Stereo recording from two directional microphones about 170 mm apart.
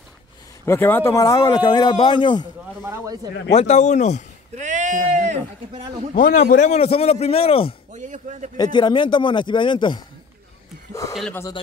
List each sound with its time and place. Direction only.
0.7 s speech: 15° left (ahead or behind); by 2.4 s 30° left (ahead or behind)
2.8 s speech: 15° right (ahead or behind)
3.5 s speech: 40° left (ahead or behind)
4.6 s speech: 45° right (ahead or behind)
6.5 s a man's voice: 45° left (ahead or behind)
7.9 s speech: 45° right (ahead or behind)
8.5 s speech: 25° left (ahead or behind)
10.9 s speech: 15° left (ahead or behind)